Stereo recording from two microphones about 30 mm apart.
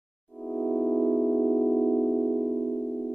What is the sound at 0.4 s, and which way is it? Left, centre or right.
Music, centre.